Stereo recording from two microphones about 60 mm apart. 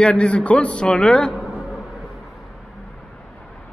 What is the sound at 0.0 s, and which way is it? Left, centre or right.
Speech, centre.